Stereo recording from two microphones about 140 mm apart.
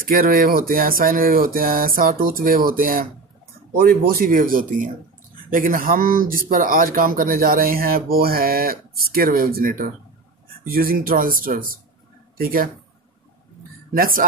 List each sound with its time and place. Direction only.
0.0 s a man's voice: 90° right
13.9 s speech: 90° right